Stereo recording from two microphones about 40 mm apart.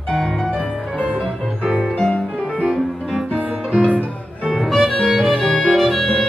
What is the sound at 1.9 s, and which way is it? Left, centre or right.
Music, left.